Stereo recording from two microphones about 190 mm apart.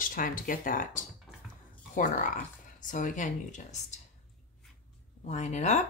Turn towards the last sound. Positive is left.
turn(degrees=40)  # may be behind; listen again after turning